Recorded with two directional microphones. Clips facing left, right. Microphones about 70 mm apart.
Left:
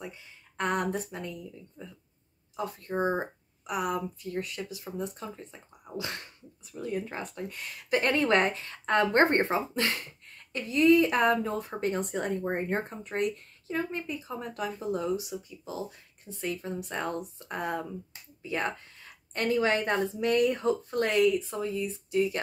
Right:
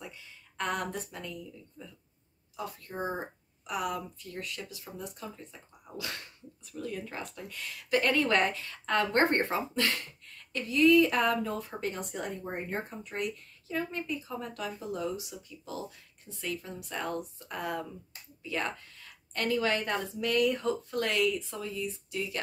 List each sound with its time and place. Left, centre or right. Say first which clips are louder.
0.0 s speech: left 4 dB; left